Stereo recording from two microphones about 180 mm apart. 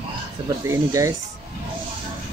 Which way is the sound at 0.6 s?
20° right (ahead or behind).